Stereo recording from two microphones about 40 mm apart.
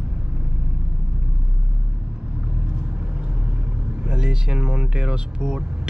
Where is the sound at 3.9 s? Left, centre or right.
Centre.